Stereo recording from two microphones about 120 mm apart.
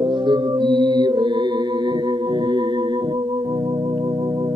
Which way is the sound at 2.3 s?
40° right (ahead or behind).